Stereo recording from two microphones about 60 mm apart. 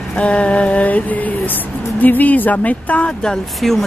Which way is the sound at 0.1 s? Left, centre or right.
Left.